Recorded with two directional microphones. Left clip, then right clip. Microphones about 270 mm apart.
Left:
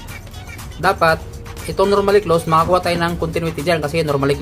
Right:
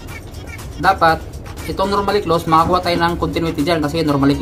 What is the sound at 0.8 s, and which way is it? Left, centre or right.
Speech, centre.